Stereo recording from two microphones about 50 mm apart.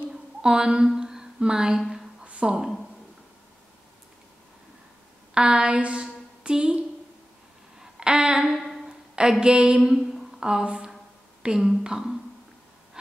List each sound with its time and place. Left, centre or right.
0.4 s speech: centre
0.9 s music: centre
2.2 s a woman's voice: right
5.3 s speech: centre
7.8 s a sound: centre
9.1 s speech: centre
9.8 s a sound: centre
11.4 s speech: centre
13.0 s insect: centre